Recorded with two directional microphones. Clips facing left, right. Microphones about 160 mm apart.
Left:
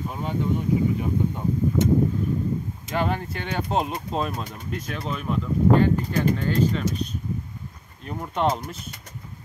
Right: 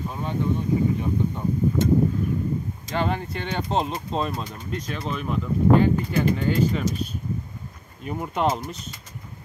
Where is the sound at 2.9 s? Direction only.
5° left (ahead or behind).